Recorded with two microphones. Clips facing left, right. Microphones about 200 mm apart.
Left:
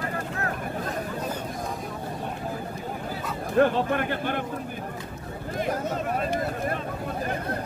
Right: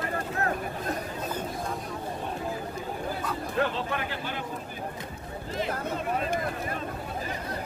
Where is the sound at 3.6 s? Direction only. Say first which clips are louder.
Left 8 dB; 50° left (ahead or behind).